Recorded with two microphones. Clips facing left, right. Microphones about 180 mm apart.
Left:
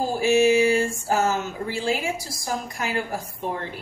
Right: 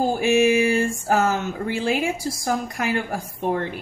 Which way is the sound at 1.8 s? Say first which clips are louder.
Right 2 dB; 55° right (ahead or behind).